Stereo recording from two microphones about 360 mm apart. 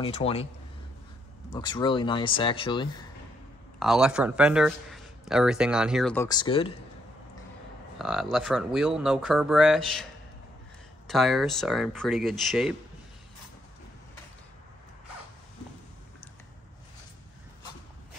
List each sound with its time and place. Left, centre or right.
0.0 s speech: centre
1.5 s speech: centre
3.8 s a man's voice: centre
8.0 s a man's voice: centre
11.1 s a man's voice: centre